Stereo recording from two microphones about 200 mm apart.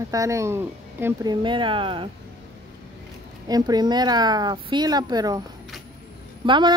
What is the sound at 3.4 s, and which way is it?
Speech, 20° right (ahead or behind).